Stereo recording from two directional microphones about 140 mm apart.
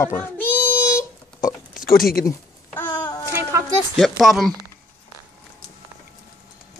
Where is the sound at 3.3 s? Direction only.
15° right (ahead or behind).